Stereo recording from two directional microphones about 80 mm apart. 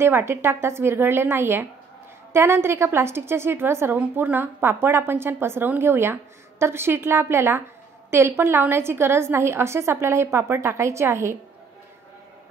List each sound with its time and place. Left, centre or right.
0.0 s a woman's voice: right